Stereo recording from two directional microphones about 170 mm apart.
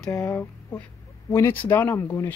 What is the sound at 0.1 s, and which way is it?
Speech, 15° left (ahead or behind).